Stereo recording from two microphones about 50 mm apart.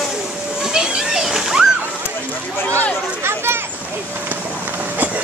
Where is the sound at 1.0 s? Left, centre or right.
Centre.